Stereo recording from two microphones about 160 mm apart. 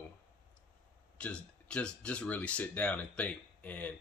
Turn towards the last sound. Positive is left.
turn(degrees=10)  # may be behind; listen again after turning